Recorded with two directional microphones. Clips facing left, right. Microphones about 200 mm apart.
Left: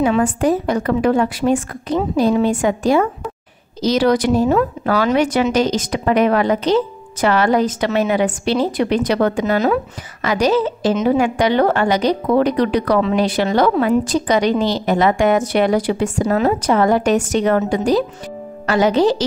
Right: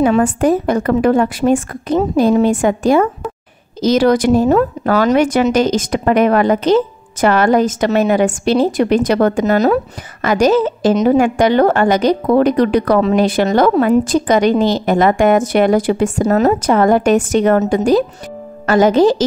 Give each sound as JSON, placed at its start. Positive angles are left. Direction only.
{"t": 0.0, "sound": "a woman's voice", "side_deg": -50}